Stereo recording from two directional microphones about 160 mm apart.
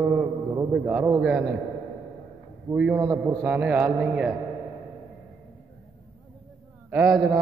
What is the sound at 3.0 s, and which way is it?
A man's voice, 20° right (ahead or behind).